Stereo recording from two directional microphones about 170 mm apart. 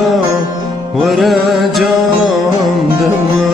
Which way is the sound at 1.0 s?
Centre (ahead or behind).